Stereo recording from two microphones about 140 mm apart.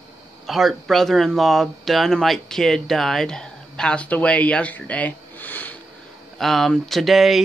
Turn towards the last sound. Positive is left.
turn(degrees=0)  # may be behind; listen again after turning